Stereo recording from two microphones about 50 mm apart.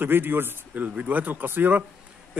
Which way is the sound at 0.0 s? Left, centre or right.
Right.